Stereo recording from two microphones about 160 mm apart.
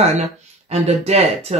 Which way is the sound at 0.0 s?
45° right (ahead or behind).